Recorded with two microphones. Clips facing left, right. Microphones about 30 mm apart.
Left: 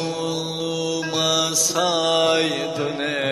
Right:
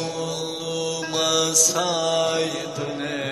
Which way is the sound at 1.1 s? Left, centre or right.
Centre.